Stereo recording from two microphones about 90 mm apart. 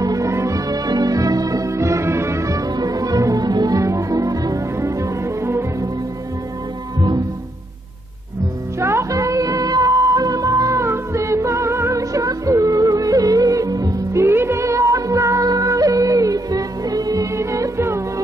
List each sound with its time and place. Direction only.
0.0 s music: 40° right (ahead or behind)
8.7 s music: 30° right (ahead or behind)
14.2 s music: 25° right (ahead or behind)